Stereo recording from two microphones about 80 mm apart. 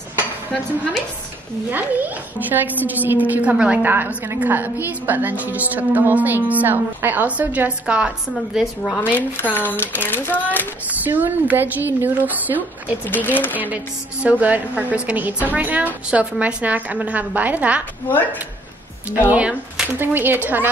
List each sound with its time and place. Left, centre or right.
1.7 s a woman's voice: right
8.5 s speech: centre
9.1 s speech: left
10.9 s a woman's voice: right
13.1 s speech: left
14.4 s a woman's voice: centre
19.0 s a woman's voice: centre